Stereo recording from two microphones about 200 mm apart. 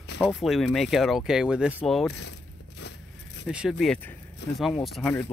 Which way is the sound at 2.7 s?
60° left (ahead or behind).